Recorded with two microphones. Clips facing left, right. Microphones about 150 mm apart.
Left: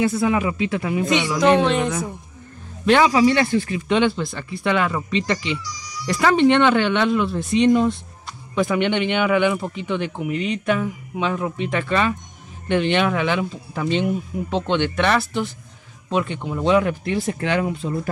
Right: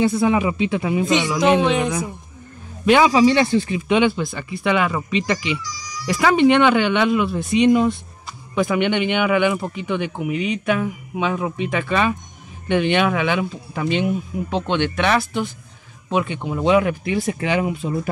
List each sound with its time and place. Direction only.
0.0 s speech: 20° right (ahead or behind)
5.6 s a sound: 90° right
6.1 s speech: 5° right (ahead or behind)